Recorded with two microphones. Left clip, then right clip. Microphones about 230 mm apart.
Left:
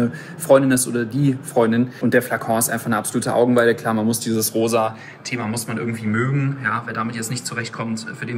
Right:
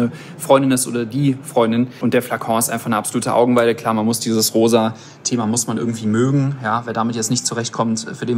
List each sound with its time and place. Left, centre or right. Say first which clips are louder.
0.0 s speech: right 1 dB; centre
4.6 s speech: right 4 dB; right
5.5 s speech: right 4 dB; centre